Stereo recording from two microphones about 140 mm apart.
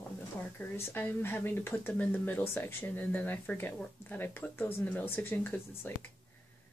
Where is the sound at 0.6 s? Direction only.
15° left (ahead or behind).